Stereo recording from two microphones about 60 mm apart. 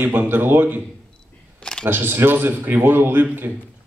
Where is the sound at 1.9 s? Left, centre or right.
Right.